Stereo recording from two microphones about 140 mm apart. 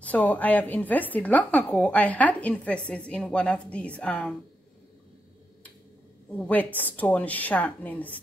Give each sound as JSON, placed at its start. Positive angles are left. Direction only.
{"t": 0.0, "sound": "a woman's voice", "side_deg": 10}
{"t": 6.3, "sound": "a woman's voice", "side_deg": 10}